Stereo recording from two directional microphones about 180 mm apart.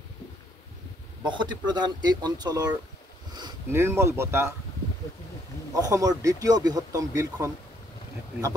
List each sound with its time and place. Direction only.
1.2 s speech: 25° right (ahead or behind)
5.8 s speech: 20° right (ahead or behind)